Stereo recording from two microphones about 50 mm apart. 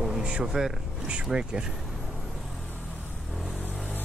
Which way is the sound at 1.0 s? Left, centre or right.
Centre.